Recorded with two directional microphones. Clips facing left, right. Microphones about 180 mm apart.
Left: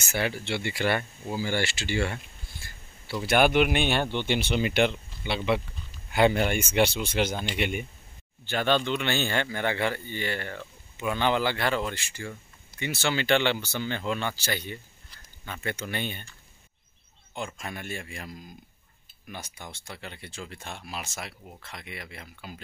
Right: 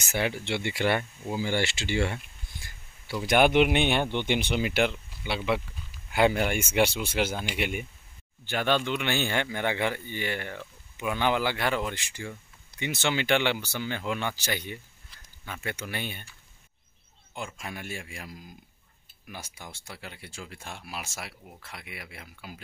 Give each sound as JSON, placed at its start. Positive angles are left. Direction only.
{"t": 0.0, "sound": "speech", "side_deg": -15}